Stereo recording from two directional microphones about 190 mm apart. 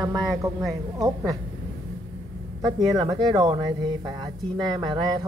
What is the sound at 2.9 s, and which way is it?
Mantra, 20° right (ahead or behind).